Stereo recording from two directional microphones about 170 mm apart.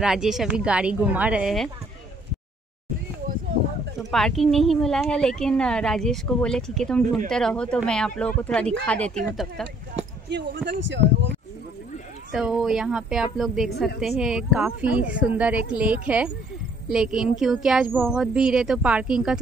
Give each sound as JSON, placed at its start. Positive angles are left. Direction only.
{"t": 0.0, "sound": "a woman's voice", "side_deg": -5}
{"t": 4.1, "sound": "a woman's voice", "side_deg": 0}
{"t": 10.3, "sound": "speech", "side_deg": -90}
{"t": 12.4, "sound": "a woman's voice", "side_deg": 0}